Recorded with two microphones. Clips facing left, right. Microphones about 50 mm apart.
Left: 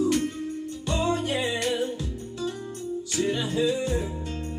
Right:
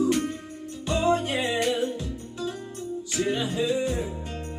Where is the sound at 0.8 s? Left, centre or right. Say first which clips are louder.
Right 3 dB; right.